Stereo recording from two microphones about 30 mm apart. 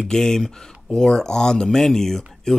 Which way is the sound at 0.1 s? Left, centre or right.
Centre.